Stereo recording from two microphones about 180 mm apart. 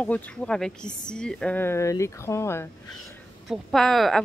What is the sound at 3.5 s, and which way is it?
Speech, centre (ahead or behind).